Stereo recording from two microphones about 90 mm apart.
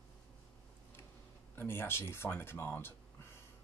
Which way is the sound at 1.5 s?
25° left (ahead or behind).